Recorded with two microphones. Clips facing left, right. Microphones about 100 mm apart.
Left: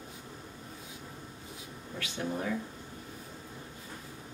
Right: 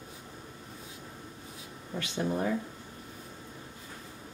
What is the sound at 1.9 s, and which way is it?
Speech, 20° right (ahead or behind).